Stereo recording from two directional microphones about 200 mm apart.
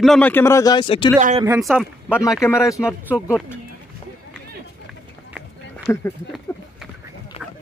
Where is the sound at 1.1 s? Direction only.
35° right (ahead or behind).